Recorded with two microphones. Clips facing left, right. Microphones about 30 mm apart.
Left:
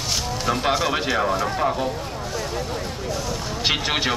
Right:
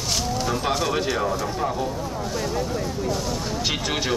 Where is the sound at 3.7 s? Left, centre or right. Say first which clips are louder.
Left 5 dB; left.